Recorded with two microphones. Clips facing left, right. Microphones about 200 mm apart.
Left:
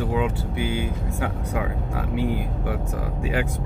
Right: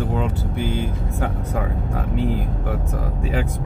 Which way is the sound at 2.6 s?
50° right (ahead or behind).